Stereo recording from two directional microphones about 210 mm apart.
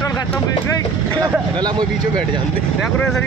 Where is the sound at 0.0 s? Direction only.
15° left (ahead or behind).